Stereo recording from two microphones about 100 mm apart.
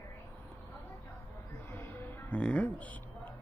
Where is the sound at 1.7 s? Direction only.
20° left (ahead or behind).